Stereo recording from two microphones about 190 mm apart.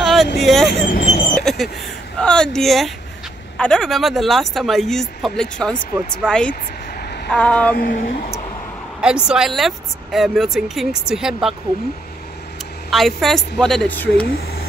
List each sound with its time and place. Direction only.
0.0 s vehicle: centre (ahead or behind)
0.4 s speech: centre (ahead or behind)
0.7 s speech: 50° left (ahead or behind)
1.3 s speech: centre (ahead or behind)
7.7 s speech: 50° left (ahead or behind)
9.0 s speech: 5° right (ahead or behind)
12.9 s speech: centre (ahead or behind)
14.3 s speech: 55° left (ahead or behind)